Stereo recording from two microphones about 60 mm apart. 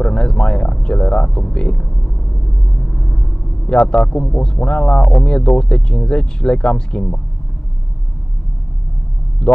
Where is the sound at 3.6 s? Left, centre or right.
Centre.